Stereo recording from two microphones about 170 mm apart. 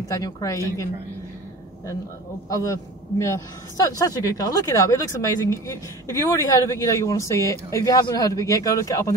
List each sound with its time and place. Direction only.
0.1 s a man's voice: 20° left (ahead or behind)
2.5 s a man's voice: 20° left (ahead or behind)